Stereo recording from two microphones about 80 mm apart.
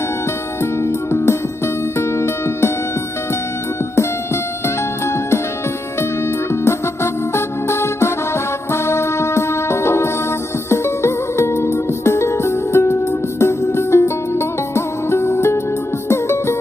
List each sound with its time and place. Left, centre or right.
0.6 s music: left
4.6 s music: left
6.5 s music: left